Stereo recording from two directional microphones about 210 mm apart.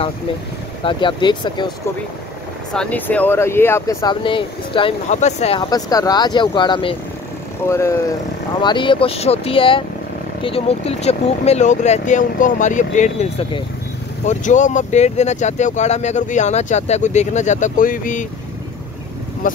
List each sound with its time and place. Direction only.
0.8 s speech: 20° left (ahead or behind)
2.7 s speech: 5° left (ahead or behind); by 7.0 s 25° left (ahead or behind)
7.6 s speech: 10° left (ahead or behind)
8.5 s speech: 25° left (ahead or behind); by 18.2 s 40° left (ahead or behind)
19.4 s speech: 40° left (ahead or behind)